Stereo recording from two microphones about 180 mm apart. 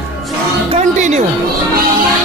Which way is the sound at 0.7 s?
40° right (ahead or behind).